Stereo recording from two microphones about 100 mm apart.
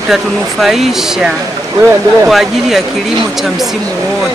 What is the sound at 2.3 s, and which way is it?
Speech, 5° right (ahead or behind).